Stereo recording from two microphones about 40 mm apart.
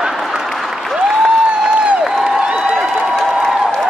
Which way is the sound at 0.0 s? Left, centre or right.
Centre.